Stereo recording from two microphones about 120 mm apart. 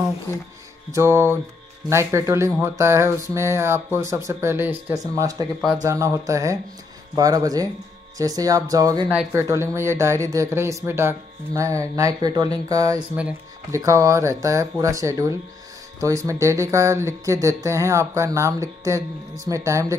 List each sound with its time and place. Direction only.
0.9 s speech: 20° right (ahead or behind)
4.9 s speech: 30° right (ahead or behind)